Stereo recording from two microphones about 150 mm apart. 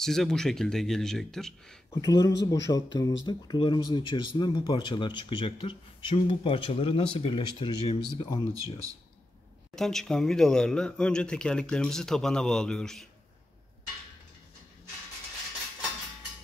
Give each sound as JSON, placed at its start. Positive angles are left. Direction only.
{"t": 0.0, "sound": "speech", "side_deg": 0}
{"t": 2.0, "sound": "speech", "side_deg": 25}
{"t": 9.8, "sound": "speech", "side_deg": 5}